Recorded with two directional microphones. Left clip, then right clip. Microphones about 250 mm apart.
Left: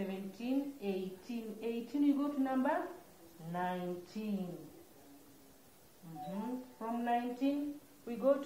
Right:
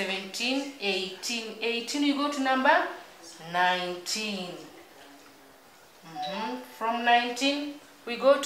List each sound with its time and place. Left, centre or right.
0.0 s a woman's voice: centre
6.2 s speech: centre